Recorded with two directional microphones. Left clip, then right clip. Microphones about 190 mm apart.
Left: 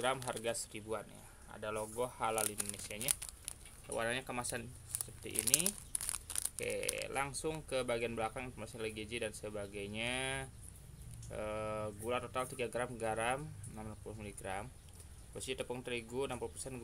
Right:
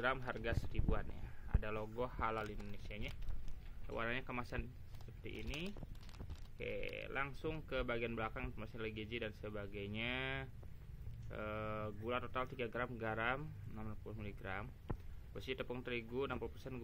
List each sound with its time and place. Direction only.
0.0 s speech: 15° left (ahead or behind)
3.9 s speech: 15° left (ahead or behind)
6.6 s speech: 15° left (ahead or behind)